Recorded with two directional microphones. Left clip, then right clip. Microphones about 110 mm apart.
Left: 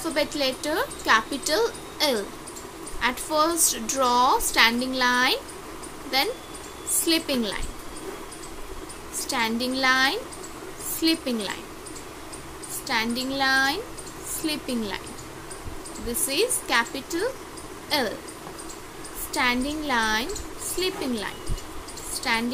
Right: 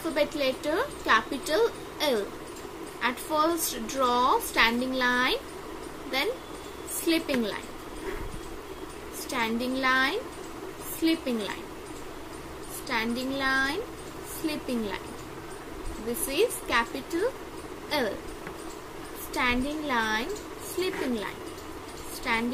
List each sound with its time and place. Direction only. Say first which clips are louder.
0.1 s a woman's voice: left 1 dB; 30° left (ahead or behind)
9.3 s a woman's voice: left 3 dB; 35° left (ahead or behind)
12.8 s a woman's voice: left 4 dB; 30° left (ahead or behind)
16.3 s a woman's voice: left 2 dB; 30° left (ahead or behind)
19.3 s a woman's voice: left 3 dB; 30° left (ahead or behind)
22.2 s speech: left 3 dB; 35° left (ahead or behind)